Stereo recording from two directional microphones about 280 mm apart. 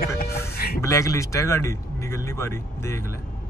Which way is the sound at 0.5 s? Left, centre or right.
Left.